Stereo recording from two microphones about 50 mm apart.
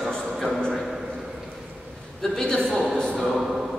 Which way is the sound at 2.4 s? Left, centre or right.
Centre.